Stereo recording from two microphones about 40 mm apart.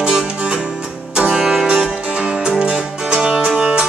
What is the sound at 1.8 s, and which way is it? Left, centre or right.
Music, right.